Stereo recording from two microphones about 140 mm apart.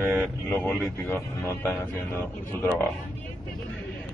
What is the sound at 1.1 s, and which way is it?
Speech, 20° left (ahead or behind).